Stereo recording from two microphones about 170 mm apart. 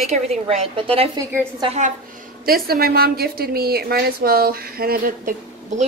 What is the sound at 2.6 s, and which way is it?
A woman's voice, 65° right (ahead or behind).